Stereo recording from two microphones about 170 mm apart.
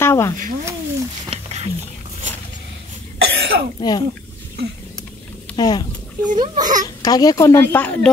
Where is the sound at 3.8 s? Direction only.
25° left (ahead or behind).